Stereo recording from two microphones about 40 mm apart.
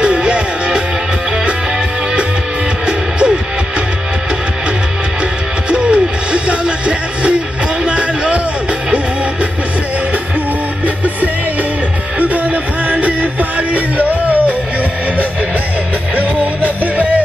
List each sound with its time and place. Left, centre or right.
0.0 s music: right
2.9 s music: right
5.7 s music: right
7.8 s a sound: right
12.2 s music: right
16.2 s music: right